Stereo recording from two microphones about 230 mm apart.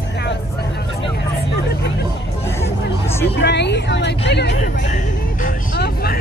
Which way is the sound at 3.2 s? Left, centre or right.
Left.